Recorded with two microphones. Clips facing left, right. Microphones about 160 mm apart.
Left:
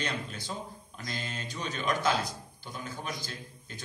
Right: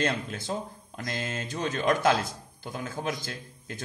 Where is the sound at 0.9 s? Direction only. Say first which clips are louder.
Right 6 dB; 75° right (ahead or behind).